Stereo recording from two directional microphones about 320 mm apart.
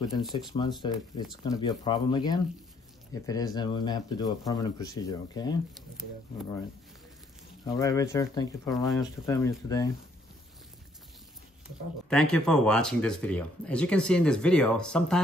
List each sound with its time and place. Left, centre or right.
0.2 s speech: centre
0.5 s speech: centre
7.6 s speech: centre
8.8 s speech: centre
12.1 s speech: centre